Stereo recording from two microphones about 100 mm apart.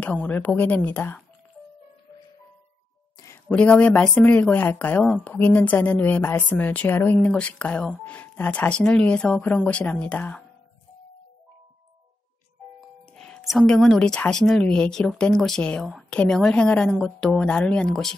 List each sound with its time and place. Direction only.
0.0 s a woman's voice: 15° left (ahead or behind)
3.4 s a woman's voice: 15° left (ahead or behind)
13.1 s music: 5° left (ahead or behind)
13.5 s a woman's voice: 5° left (ahead or behind)